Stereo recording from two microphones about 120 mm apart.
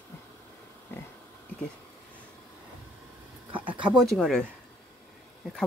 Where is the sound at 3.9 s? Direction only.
Centre (ahead or behind).